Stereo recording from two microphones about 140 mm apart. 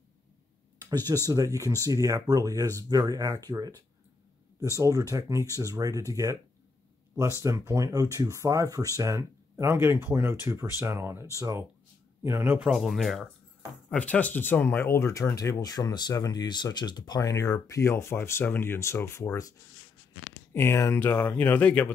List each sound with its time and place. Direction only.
0.7 s a sound: 25° right (ahead or behind)
1.2 s speech: 25° right (ahead or behind)
7.4 s speech: 20° right (ahead or behind)
12.6 s speech: centre (ahead or behind)
13.8 s speech: 10° left (ahead or behind)
20.5 s speech: 20° left (ahead or behind)